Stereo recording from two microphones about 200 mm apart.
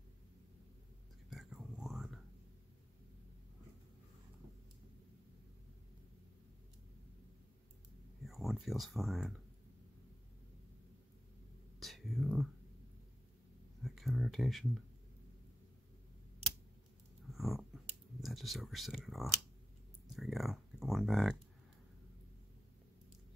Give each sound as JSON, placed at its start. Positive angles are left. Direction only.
{"t": 1.3, "sound": "whispering", "side_deg": 0}
{"t": 8.3, "sound": "speech", "side_deg": 0}
{"t": 11.8, "sound": "whispering", "side_deg": 0}
{"t": 13.8, "sound": "speech", "side_deg": 0}
{"t": 17.3, "sound": "a sound", "side_deg": 0}
{"t": 18.2, "sound": "speech", "side_deg": 0}